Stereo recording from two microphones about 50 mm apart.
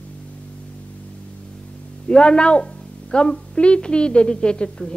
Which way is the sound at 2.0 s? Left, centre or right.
Centre.